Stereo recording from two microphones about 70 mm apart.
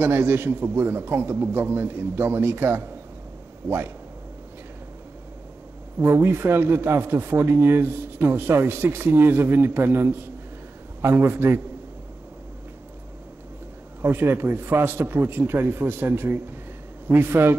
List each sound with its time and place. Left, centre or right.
0.0 s a man's voice: right
5.9 s a man's voice: right
14.0 s a man's voice: right